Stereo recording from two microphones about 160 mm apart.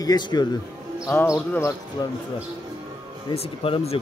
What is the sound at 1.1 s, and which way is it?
Speech, 10° left (ahead or behind).